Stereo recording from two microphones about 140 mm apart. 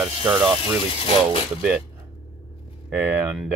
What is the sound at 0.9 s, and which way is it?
Mechanisms, 40° left (ahead or behind).